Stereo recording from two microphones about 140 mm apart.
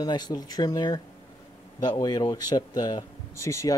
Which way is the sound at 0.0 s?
30° left (ahead or behind).